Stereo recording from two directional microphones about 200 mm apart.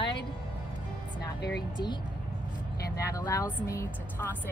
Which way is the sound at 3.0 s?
15° left (ahead or behind).